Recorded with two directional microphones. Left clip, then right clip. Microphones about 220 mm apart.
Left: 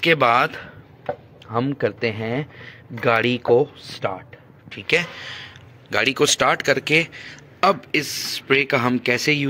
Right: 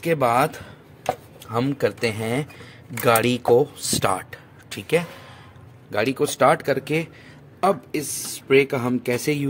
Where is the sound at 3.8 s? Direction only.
30° right (ahead or behind).